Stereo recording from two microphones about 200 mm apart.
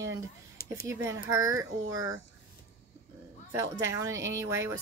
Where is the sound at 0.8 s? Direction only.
15° right (ahead or behind).